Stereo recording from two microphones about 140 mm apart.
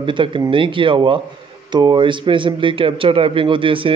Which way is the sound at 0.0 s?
35° right (ahead or behind).